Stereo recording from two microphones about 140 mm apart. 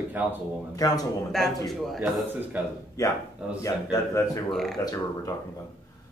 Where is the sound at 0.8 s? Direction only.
25° left (ahead or behind).